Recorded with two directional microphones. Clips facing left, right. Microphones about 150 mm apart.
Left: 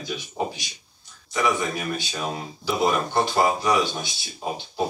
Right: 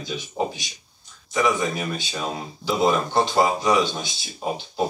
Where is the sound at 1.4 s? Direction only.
20° right (ahead or behind).